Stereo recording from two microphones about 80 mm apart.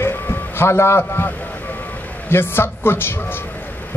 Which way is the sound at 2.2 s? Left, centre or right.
Left.